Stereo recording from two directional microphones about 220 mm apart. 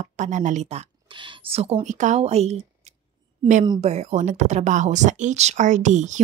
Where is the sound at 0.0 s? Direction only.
35° right (ahead or behind).